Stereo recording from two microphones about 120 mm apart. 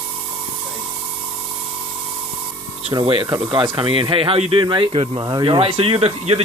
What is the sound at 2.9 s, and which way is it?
Speech, 40° right (ahead or behind).